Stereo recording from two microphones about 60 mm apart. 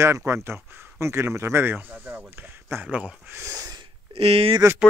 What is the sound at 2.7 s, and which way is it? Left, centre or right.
Speech, right.